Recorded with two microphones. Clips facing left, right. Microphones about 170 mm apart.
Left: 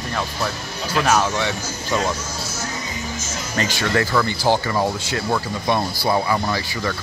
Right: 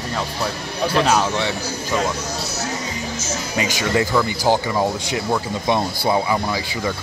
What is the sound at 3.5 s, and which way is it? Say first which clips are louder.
Speech: right 1 dB; 10° right (ahead or behind).